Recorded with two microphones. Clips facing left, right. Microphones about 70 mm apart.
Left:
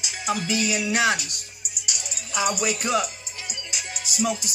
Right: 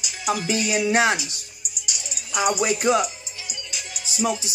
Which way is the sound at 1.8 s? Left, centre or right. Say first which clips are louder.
Even; left.